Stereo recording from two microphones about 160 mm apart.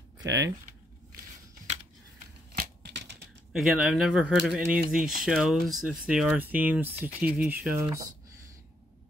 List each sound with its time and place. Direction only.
2.5 s scissors: 80° right
3.5 s speech: 5° right (ahead or behind)